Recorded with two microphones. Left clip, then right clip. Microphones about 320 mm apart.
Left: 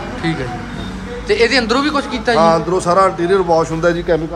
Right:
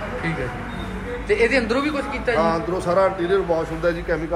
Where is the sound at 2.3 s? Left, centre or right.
Left.